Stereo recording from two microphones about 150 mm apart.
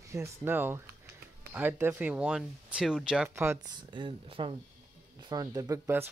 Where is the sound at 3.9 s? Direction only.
35° right (ahead or behind).